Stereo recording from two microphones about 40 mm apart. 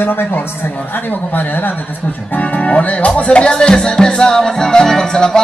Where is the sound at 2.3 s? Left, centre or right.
Left.